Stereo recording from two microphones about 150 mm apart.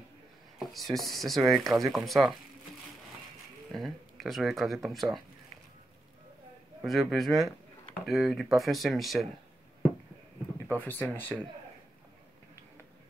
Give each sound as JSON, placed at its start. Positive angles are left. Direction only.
{"t": 0.6, "sound": "speech", "side_deg": 0}
{"t": 3.7, "sound": "speech", "side_deg": 0}
{"t": 6.8, "sound": "speech", "side_deg": 0}
{"t": 10.7, "sound": "speech", "side_deg": 10}